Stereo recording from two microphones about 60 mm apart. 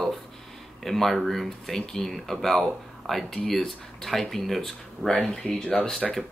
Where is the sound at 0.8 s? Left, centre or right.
Centre.